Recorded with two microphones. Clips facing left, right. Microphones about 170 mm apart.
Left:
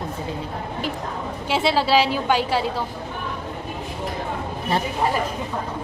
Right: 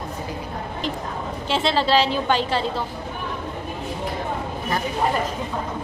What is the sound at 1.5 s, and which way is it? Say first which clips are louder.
A woman's voice: left 1 dB; 10° left (ahead or behind).